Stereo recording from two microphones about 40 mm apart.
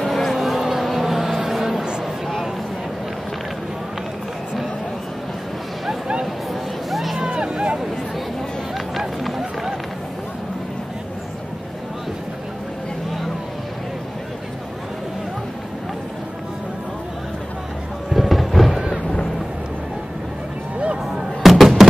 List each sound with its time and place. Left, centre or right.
0.0 s a sound: centre
6.9 s music: centre
7.2 s vehicle: right
9.4 s run: centre
18.1 s music: centre
21.4 s fireworks: centre